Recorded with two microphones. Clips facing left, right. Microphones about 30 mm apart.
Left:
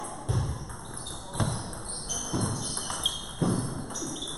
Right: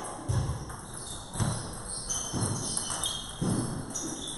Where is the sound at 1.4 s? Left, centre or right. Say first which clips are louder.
Left 2 dB; left.